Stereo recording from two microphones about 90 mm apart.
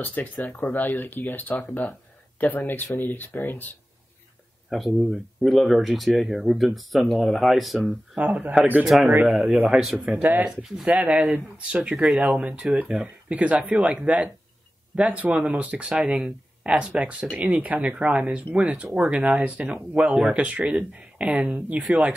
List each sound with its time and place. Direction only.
0.0 s speech: 20° left (ahead or behind)
4.6 s speech: centre (ahead or behind)
8.5 s speech: 20° right (ahead or behind)
9.7 s speech: 5° right (ahead or behind)
11.0 s speech: 15° right (ahead or behind)